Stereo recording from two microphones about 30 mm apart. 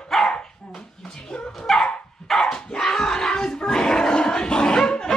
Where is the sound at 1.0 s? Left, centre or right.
Left.